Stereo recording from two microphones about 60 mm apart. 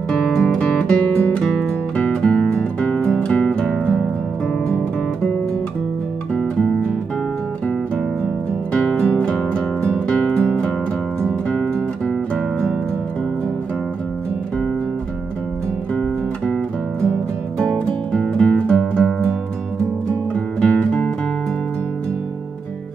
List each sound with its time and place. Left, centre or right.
0.1 s music: centre
4.6 s guitar: centre
6.3 s music: centre
8.7 s music: centre
12.4 s music: centre
17.6 s music: centre
20.3 s music: centre